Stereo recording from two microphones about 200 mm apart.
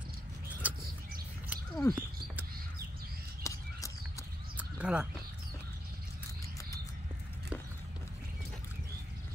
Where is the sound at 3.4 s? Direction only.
15° left (ahead or behind).